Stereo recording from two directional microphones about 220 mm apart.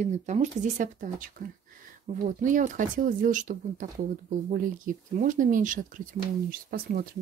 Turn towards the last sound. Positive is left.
turn(degrees=-45)  # may be behind; listen again after turning